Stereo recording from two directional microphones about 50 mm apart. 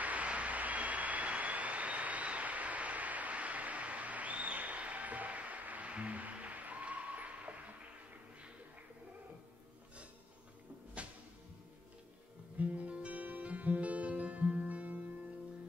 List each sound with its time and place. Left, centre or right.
0.0 s a sound: right
11.0 s music: right
12.5 s music: right